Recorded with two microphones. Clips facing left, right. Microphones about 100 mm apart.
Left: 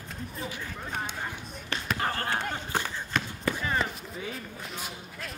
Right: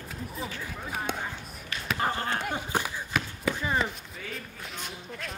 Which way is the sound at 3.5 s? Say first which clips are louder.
Right 1 dB; centre (ahead or behind).